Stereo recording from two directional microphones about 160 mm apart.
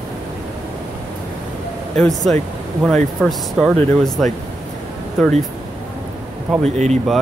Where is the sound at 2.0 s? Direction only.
Centre (ahead or behind).